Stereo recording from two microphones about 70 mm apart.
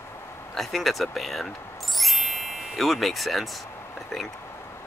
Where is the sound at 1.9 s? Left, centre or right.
Centre.